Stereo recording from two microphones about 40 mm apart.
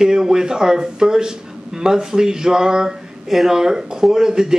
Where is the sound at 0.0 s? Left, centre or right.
Centre.